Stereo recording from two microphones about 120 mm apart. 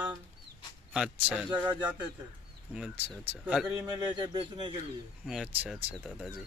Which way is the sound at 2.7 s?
10° right (ahead or behind).